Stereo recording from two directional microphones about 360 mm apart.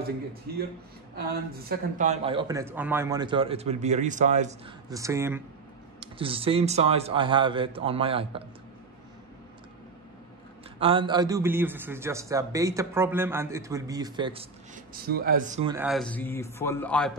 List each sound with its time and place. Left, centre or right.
1.7 s a man's voice: centre
10.8 s a man's voice: centre
15.0 s speech: right
15.7 s a man's voice: centre